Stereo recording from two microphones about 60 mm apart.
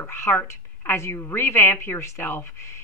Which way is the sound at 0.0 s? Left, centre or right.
Left.